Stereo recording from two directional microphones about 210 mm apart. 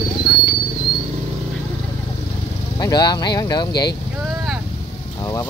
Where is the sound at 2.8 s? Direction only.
20° left (ahead or behind).